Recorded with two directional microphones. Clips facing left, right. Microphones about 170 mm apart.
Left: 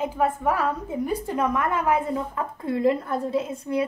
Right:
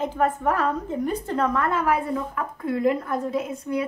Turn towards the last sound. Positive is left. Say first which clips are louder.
# left 1 dB
turn(degrees=30)  # may be behind; listen again after turning